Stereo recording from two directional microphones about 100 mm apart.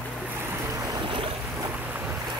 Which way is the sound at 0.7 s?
35° right (ahead or behind).